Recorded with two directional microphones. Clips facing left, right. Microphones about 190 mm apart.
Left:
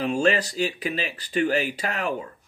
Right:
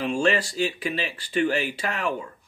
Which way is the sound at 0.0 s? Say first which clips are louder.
Left 1 dB; 40° left (ahead or behind).